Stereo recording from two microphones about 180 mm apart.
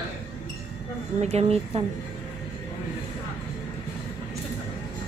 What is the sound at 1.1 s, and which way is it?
Speech, 35° right (ahead or behind).